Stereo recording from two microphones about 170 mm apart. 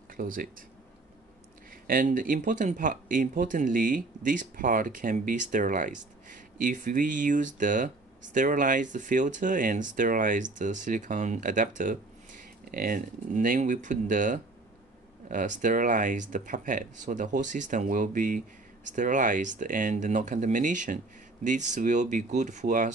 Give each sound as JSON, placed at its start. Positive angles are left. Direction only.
{"t": 0.2, "sound": "speech", "side_deg": -55}
{"t": 1.9, "sound": "speech", "side_deg": -55}